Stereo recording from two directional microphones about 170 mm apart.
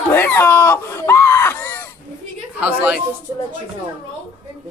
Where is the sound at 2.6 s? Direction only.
10° right (ahead or behind).